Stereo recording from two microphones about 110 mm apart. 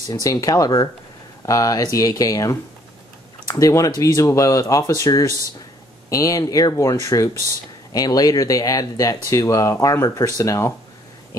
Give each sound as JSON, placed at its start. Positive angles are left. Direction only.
{"t": 0.1, "sound": "speech", "side_deg": 30}